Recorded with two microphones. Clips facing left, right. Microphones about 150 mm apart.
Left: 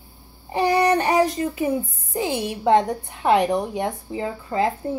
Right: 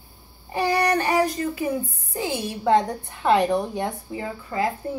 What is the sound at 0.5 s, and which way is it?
Child singing, 20° left (ahead or behind).